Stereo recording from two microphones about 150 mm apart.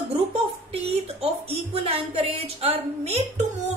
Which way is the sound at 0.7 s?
40° right (ahead or behind).